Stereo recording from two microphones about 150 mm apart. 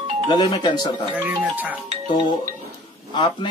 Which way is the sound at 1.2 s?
10° right (ahead or behind).